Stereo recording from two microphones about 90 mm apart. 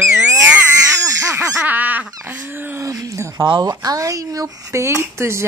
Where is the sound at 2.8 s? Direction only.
35° right (ahead or behind).